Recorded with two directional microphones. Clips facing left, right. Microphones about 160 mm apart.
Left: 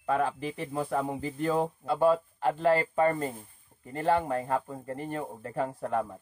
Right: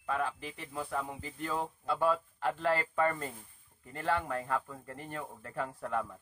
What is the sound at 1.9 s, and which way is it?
Speech, 30° left (ahead or behind).